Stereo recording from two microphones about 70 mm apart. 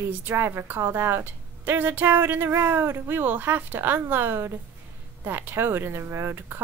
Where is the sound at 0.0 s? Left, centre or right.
Right.